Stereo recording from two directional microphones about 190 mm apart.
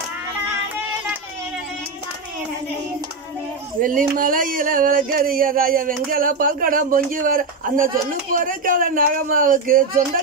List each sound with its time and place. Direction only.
3.8 s speech: 45° right (ahead or behind)